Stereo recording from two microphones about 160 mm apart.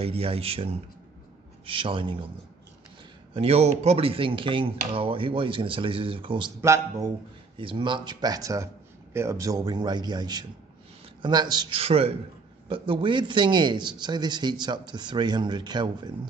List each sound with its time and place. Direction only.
0.0 s speech: 35° right (ahead or behind)
3.3 s speech: 40° right (ahead or behind)
6.6 s speech: 20° right (ahead or behind)
7.5 s speech: 30° right (ahead or behind)